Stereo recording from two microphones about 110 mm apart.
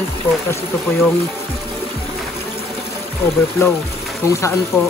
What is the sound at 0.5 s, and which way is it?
Speech, 25° left (ahead or behind).